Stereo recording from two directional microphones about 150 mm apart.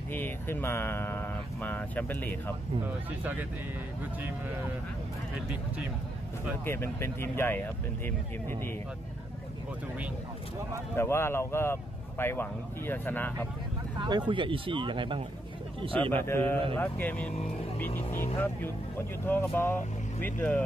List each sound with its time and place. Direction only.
0.1 s speech: 15° left (ahead or behind)
3.1 s speech: 10° right (ahead or behind)
6.6 s speech: 15° left (ahead or behind)
11.0 s speech: 15° left (ahead or behind)
13.9 s speech: 30° right (ahead or behind)
16.0 s speech: 15° left (ahead or behind)